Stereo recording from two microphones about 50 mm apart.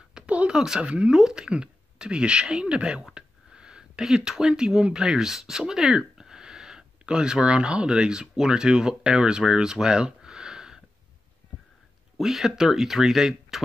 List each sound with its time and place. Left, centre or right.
0.3 s a sound: right
0.7 s speech: right
1.1 s speech: centre
3.2 s a sound: centre
4.0 s speech: centre
12.2 s speech: centre